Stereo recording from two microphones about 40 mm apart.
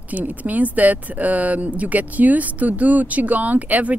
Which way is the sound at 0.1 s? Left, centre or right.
Right.